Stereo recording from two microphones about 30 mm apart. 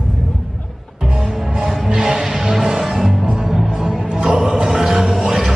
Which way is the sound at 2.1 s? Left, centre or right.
Centre.